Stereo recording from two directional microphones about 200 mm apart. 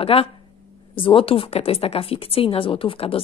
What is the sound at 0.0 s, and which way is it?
Speech, 30° left (ahead or behind).